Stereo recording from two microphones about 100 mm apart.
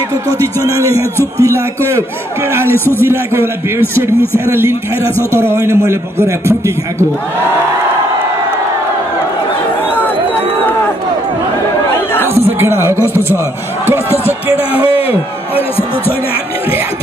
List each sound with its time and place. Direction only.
0.4 s a man's voice: 35° right (ahead or behind)
5.3 s a man's voice: 25° right (ahead or behind)
9.8 s a sound: 20° left (ahead or behind)
12.4 s speech: 25° right (ahead or behind)